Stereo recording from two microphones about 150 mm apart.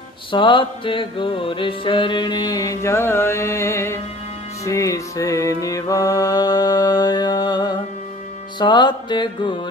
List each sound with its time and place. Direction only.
0.3 s music: 35° left (ahead or behind)